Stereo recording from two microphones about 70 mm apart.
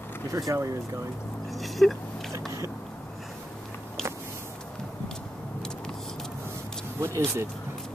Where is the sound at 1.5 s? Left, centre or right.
Centre.